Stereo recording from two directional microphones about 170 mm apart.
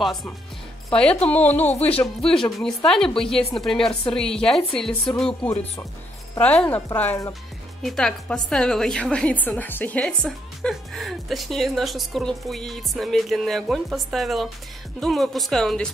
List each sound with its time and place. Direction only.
0.0 s a woman's voice: centre (ahead or behind)
1.3 s a woman's voice: 10° left (ahead or behind)
7.8 s a woman's voice: 5° left (ahead or behind)